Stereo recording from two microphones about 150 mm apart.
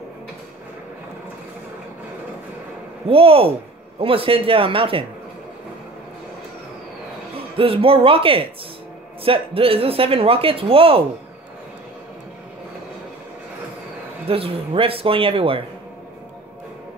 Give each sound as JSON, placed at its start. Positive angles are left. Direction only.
{"t": 3.1, "sound": "speech", "side_deg": -40}
{"t": 7.5, "sound": "speech", "side_deg": -40}
{"t": 14.2, "sound": "speech", "side_deg": -40}